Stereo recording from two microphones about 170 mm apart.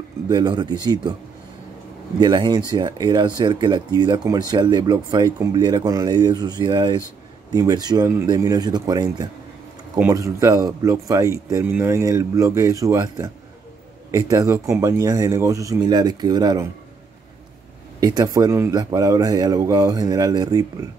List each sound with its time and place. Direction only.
0.3 s speech: 25° right (ahead or behind)
2.1 s speech: 25° right (ahead or behind)
18.0 s speech: 20° right (ahead or behind)